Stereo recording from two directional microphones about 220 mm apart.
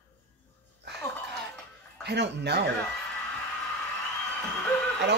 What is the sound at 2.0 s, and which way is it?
Speech, 50° right (ahead or behind).